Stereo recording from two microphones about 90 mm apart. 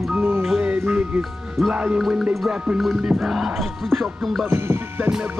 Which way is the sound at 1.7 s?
15° right (ahead or behind).